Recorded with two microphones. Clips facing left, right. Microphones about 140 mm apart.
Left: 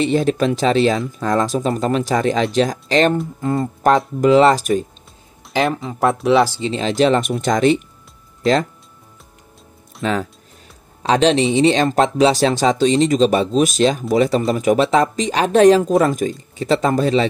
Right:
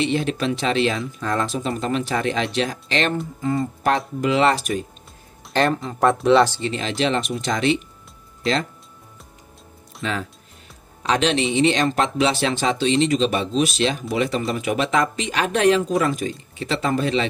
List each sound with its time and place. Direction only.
0.0 s speech: 40° left (ahead or behind)
5.5 s speech: 5° left (ahead or behind)
6.6 s speech: 30° left (ahead or behind)
10.0 s speech: 50° left (ahead or behind)
11.0 s speech: 35° left (ahead or behind)